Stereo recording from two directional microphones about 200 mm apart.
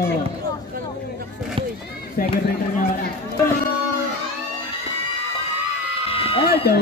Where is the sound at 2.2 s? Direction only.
45° left (ahead or behind).